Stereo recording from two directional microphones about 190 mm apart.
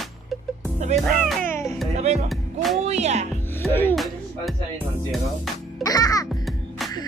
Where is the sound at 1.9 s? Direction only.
35° right (ahead or behind).